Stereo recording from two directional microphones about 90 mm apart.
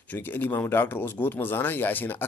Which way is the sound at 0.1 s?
20° left (ahead or behind).